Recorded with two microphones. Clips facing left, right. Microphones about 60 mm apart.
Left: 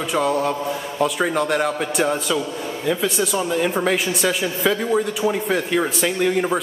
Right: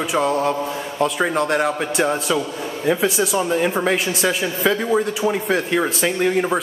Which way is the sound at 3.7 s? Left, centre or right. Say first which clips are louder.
Right 1 dB; centre.